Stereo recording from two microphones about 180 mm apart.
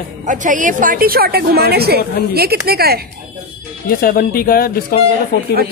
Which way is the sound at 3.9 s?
55° left (ahead or behind).